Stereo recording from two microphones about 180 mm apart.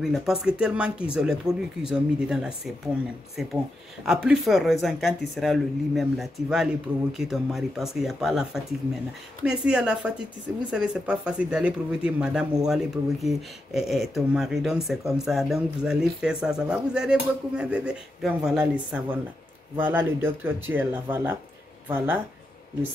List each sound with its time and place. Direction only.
0.0 s speech: centre (ahead or behind)